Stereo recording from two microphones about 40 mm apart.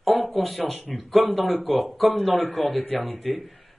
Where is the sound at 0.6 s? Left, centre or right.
Centre.